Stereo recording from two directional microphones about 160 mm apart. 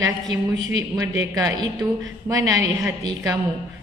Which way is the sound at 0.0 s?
20° right (ahead or behind).